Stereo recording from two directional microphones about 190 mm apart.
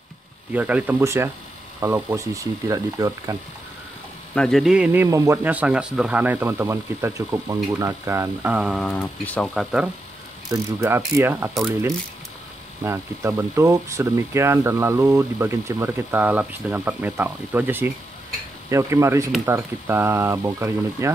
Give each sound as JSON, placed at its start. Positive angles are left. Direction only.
{"t": 0.5, "sound": "speech", "side_deg": -10}
{"t": 4.4, "sound": "speech", "side_deg": 0}
{"t": 10.5, "sound": "speech", "side_deg": -15}
{"t": 12.8, "sound": "speech", "side_deg": -15}